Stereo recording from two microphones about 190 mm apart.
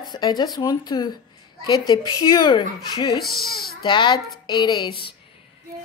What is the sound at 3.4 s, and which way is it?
Speech, 55° left (ahead or behind).